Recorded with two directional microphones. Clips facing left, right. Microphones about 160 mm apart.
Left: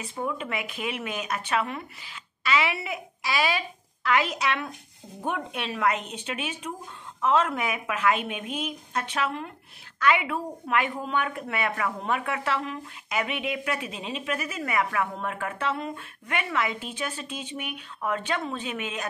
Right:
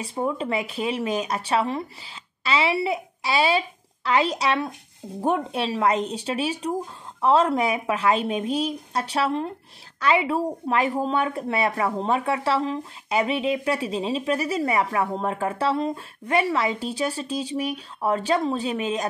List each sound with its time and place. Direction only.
0.0 s a woman's voice: 35° right (ahead or behind)